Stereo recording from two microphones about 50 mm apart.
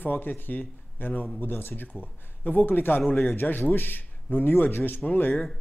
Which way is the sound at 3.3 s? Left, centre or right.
Left.